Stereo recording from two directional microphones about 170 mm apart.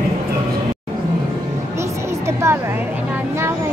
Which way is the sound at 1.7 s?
15° right (ahead or behind).